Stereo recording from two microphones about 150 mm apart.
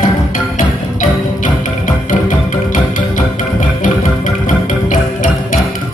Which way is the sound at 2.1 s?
65° left (ahead or behind).